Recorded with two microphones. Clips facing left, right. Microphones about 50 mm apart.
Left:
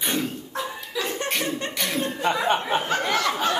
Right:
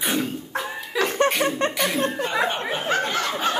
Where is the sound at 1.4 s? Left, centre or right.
Right.